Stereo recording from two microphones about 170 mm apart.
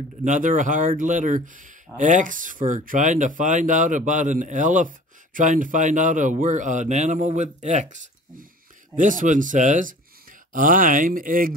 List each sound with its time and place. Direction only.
0.2 s speech: 50° right (ahead or behind)